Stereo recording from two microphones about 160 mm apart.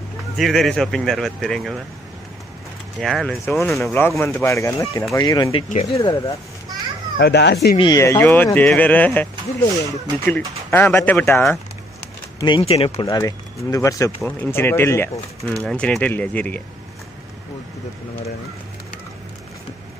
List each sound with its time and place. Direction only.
0.4 s speech: centre (ahead or behind)
3.0 s speech: centre (ahead or behind)
3.4 s speech: 15° left (ahead or behind)
7.2 s speech: 90° left
7.7 s speech: 25° left (ahead or behind); by 11.5 s 10° left (ahead or behind)
12.4 s speech: 30° left (ahead or behind)
13.0 s speech: 20° left (ahead or behind)
15.4 s speech: 5° left (ahead or behind)